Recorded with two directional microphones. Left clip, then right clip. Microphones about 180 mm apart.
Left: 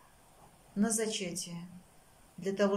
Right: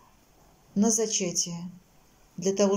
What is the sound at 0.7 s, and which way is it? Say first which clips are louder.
Speech: right 7 dB; 20° right (ahead or behind).